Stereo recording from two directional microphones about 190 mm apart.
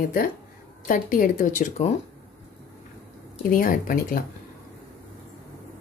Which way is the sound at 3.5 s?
50° left (ahead or behind).